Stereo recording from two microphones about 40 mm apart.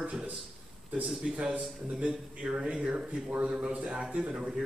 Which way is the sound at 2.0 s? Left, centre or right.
Right.